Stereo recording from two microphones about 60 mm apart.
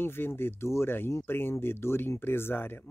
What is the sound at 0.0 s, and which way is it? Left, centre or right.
Speech, left.